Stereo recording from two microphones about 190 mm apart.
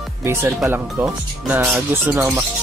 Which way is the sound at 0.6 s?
10° right (ahead or behind).